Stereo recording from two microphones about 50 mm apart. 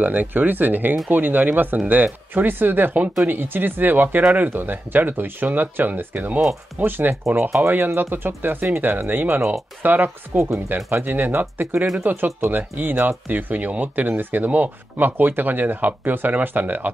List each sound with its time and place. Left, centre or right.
0.0 s speech: right
10.3 s speech: right
10.9 s speech: right